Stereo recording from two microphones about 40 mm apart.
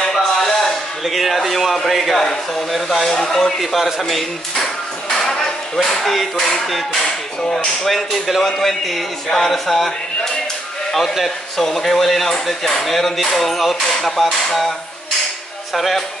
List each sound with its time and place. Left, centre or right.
0.0 s music: centre
1.0 s speech: centre
3.1 s speech: centre
3.5 s speech: centre
5.1 s a sound: centre
6.0 s speech: centre
7.9 s speech: centre
15.7 s speech: centre